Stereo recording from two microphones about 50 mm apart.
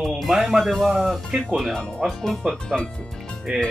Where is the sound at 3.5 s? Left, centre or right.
Centre.